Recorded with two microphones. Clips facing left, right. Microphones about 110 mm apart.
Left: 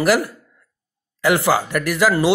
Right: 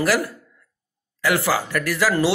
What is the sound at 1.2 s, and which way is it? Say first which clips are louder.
Speech: left 4 dB; 20° left (ahead or behind).